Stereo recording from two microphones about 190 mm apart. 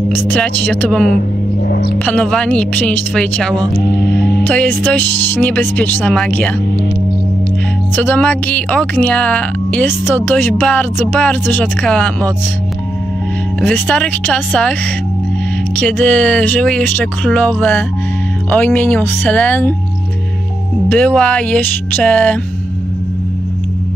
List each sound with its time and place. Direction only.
0.1 s speech: 10° left (ahead or behind)
1.7 s speech: 55° left (ahead or behind)
2.0 s speech: 5° left (ahead or behind)
7.9 s speech: 10° left (ahead or behind)
13.6 s speech: 5° left (ahead or behind)
20.9 s speech: 5° left (ahead or behind)